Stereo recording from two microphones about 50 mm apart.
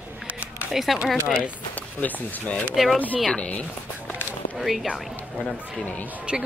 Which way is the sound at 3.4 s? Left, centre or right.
Left.